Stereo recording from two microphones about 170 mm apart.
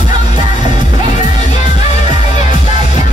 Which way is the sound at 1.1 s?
45° left (ahead or behind).